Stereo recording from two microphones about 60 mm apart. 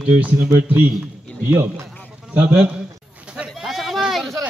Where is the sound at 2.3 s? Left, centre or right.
Right.